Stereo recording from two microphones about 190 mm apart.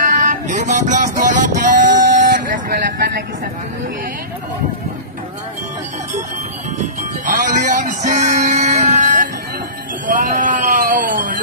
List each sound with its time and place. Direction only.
0.0 s vehicle: 40° right (ahead or behind)
6.8 s music: 40° right (ahead or behind)
10.0 s a sound: 45° right (ahead or behind)